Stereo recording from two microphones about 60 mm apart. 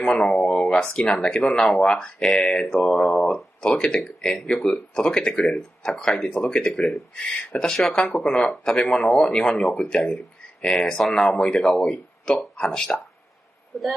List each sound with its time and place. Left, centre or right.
0.1 s speech: centre
0.5 s a sound: centre
0.9 s speech: centre
2.8 s speech: centre
3.6 s speech: centre